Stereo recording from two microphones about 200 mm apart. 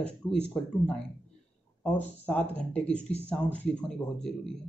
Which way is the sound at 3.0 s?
30° left (ahead or behind).